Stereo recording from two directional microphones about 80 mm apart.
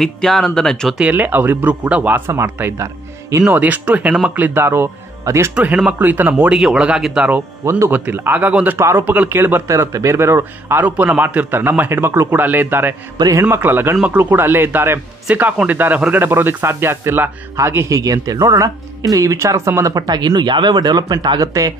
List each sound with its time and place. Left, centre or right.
0.0 s speech: centre
0.9 s a man's voice: centre
2.3 s speech: right
3.4 s a man's voice: centre; by 5.5 s right
5.5 s a man's voice: centre
6.5 s speech: centre
7.9 s a man's voice: right
9.7 s a man's voice: right
17.8 s speech: right
19.3 s speech: right